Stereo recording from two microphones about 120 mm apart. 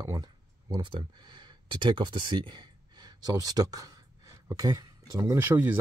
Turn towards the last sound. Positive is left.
turn(degrees=-15)  # may be behind; listen again after turning